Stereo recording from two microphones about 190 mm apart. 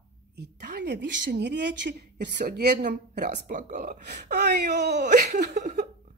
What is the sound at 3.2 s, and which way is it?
Speech, 45° right (ahead or behind).